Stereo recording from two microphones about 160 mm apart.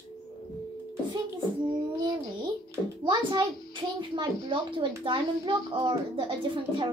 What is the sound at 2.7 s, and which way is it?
A child's voice, 25° right (ahead or behind).